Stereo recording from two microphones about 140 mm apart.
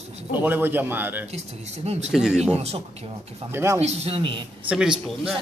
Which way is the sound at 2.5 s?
50° right (ahead or behind).